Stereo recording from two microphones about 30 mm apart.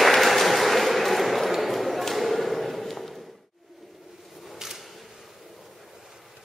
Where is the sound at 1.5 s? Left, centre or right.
Centre.